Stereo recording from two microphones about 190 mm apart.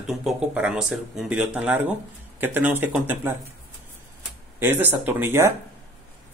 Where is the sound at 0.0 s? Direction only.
Centre (ahead or behind).